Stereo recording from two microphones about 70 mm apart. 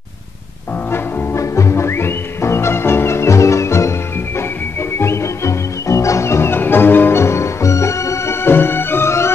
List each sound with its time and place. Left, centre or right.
0.9 s music: left
4.9 s music: left
8.5 s music: left